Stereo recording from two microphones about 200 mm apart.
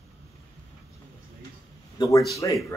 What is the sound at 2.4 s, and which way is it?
Speech, 20° left (ahead or behind).